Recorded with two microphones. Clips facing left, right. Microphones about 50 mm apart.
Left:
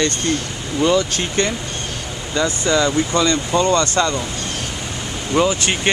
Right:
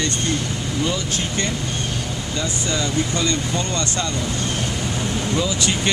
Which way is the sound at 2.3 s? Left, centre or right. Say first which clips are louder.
Left 8 dB; left.